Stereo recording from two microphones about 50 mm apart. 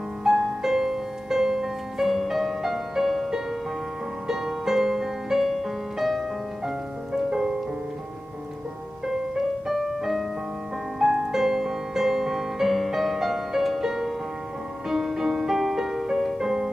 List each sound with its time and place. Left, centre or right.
0.2 s music: centre
9.0 s music: centre
11.0 s music: centre